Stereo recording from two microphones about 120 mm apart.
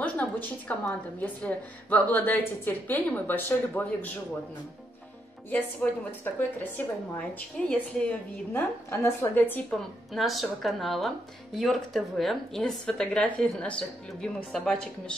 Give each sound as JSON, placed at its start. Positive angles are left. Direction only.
{"t": 0.0, "sound": "a sound", "side_deg": 10}
{"t": 1.2, "sound": "a woman's voice", "side_deg": 15}
{"t": 5.5, "sound": "a woman's voice", "side_deg": 15}
{"t": 9.7, "sound": "speech", "side_deg": 0}